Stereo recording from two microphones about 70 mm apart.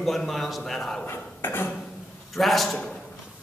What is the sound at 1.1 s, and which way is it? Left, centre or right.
Speech, left.